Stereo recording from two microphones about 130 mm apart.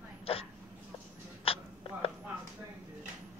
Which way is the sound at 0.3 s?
50° left (ahead or behind).